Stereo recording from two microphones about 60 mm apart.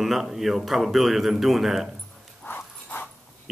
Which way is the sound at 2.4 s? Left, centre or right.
Left.